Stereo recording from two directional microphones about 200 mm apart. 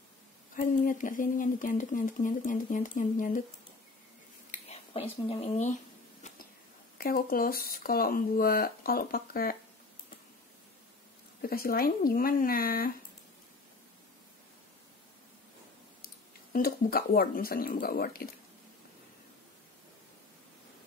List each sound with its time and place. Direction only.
0.6 s speech: 40° left (ahead or behind)
4.5 s speech: 30° left (ahead or behind)
7.0 s speech: 45° left (ahead or behind)
11.4 s speech: 50° left (ahead or behind)
16.5 s speech: 45° left (ahead or behind)